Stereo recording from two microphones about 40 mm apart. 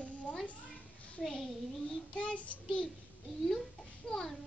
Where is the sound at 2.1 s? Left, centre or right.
Left.